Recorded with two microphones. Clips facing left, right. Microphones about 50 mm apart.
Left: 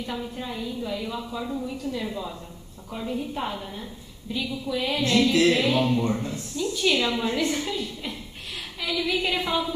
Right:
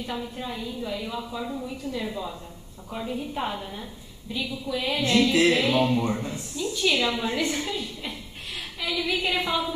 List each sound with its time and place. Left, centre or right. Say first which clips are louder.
0.0 s a woman's voice: even; centre
5.3 s a woman's voice: even; centre
6.7 s a woman's voice: even; centre